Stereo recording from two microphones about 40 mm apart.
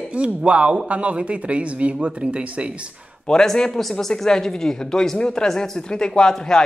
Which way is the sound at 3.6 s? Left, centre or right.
Centre.